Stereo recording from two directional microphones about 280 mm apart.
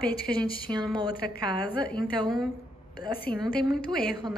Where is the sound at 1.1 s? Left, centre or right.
Left.